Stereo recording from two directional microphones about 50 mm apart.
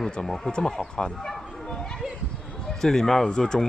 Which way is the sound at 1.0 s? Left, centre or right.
Centre.